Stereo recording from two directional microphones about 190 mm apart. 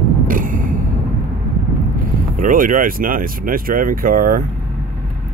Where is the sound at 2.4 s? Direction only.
45° right (ahead or behind).